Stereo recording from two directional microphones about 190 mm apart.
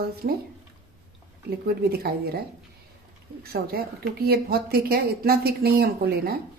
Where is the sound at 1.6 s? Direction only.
55° right (ahead or behind).